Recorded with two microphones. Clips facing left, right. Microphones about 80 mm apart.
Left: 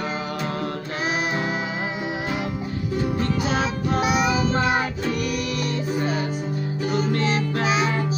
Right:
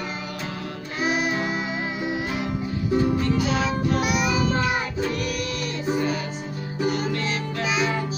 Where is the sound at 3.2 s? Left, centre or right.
Left.